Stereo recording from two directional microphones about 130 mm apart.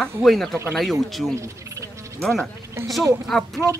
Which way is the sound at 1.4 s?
20° right (ahead or behind).